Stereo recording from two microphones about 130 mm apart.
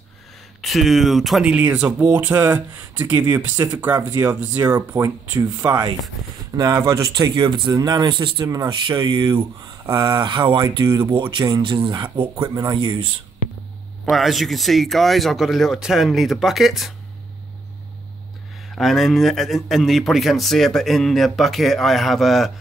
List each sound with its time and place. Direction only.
0.6 s speech: centre (ahead or behind); by 7.0 s 20° right (ahead or behind)
7.1 s speech: 35° right (ahead or behind)
12.7 s speech: 40° right (ahead or behind)
14.1 s a man's voice: centre (ahead or behind)
18.8 s a man's voice: centre (ahead or behind)